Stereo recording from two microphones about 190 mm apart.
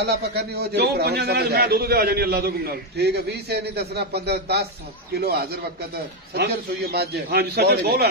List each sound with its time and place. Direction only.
0.0 s a man's voice: 60° right (ahead or behind)